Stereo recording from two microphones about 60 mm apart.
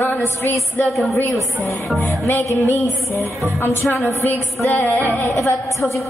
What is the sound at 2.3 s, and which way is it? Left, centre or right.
Speech, left.